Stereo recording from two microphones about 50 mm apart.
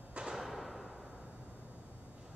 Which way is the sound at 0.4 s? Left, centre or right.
Centre.